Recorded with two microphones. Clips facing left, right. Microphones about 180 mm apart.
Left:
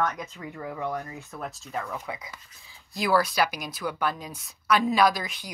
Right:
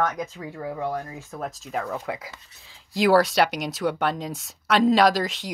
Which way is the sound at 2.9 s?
85° right.